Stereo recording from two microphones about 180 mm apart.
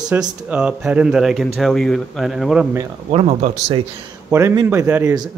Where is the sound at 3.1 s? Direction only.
35° right (ahead or behind).